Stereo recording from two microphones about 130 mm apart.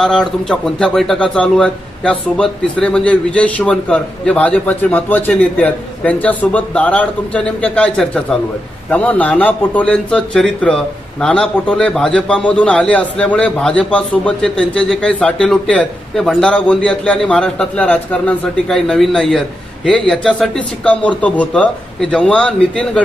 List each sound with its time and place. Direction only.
0.0 s speech: 5° left (ahead or behind)